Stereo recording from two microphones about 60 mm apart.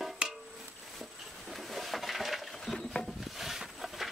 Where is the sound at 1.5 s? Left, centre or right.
Centre.